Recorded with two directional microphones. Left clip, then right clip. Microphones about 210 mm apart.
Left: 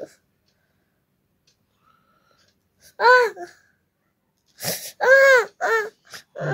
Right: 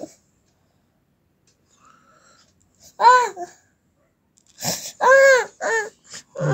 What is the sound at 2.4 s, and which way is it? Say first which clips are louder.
Babbling: right 3 dB; 35° left (ahead or behind).